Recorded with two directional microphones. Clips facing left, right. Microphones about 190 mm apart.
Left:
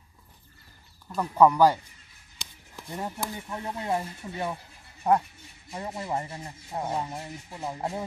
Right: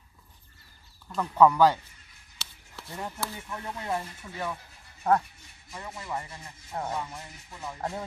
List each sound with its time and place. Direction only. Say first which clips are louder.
1.0 s speech: left 1 dB; 10° left (ahead or behind); by 4.6 s 25° left (ahead or behind)
5.1 s speech: left 1 dB; 15° left (ahead or behind)
5.7 s speech: left 5 dB; 30° left (ahead or behind)